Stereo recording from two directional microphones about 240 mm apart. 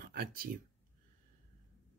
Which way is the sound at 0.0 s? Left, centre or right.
Right.